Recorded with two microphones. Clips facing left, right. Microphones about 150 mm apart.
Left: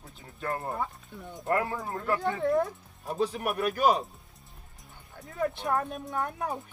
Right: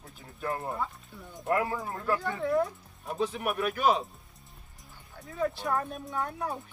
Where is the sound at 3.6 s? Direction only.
40° left (ahead or behind).